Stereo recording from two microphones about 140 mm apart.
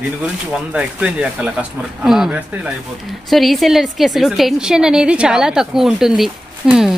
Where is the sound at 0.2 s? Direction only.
10° right (ahead or behind).